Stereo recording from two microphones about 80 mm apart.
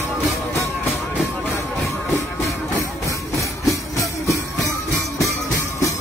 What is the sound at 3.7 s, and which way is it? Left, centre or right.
Music, left.